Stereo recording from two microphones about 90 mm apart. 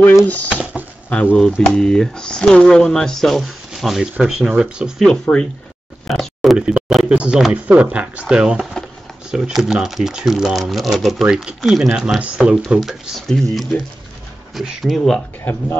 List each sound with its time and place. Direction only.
0.2 s speech: 20° left (ahead or behind)
0.5 s a sound: 15° right (ahead or behind)
1.1 s speech: 10° left (ahead or behind); by 5.0 s 10° right (ahead or behind)
5.0 s speech: 5° left (ahead or behind)
6.0 s a sound: centre (ahead or behind)
7.2 s speech: 5° right (ahead or behind)